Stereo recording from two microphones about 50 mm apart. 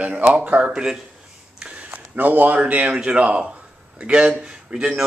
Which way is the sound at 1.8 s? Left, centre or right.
Right.